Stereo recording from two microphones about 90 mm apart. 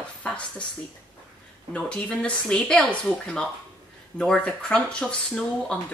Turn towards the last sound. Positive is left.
turn(degrees=10)  # may be behind; listen again after turning